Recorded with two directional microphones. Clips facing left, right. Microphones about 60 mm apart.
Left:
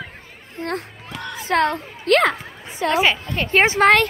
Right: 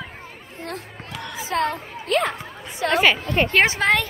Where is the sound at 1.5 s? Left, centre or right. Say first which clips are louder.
Left 4 dB; left.